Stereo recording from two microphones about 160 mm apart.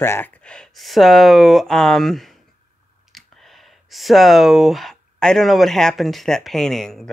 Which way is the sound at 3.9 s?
Centre (ahead or behind).